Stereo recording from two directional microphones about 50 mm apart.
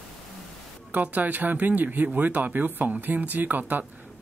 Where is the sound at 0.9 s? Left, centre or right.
Right.